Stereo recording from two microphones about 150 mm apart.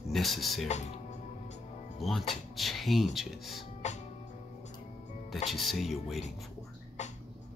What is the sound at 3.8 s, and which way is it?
Music, 50° left (ahead or behind).